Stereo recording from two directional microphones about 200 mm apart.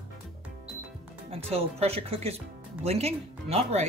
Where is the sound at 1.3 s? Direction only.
30° right (ahead or behind).